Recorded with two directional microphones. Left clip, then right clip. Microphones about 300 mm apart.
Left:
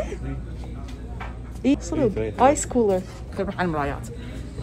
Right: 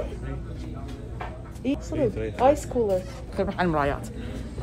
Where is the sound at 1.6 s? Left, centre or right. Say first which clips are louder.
Left 6 dB; left.